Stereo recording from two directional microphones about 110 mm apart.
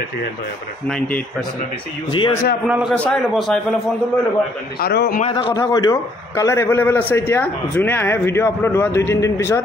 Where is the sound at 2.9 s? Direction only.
10° left (ahead or behind).